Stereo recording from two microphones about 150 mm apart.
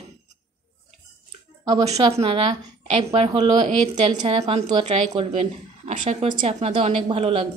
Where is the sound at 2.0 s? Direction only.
40° right (ahead or behind).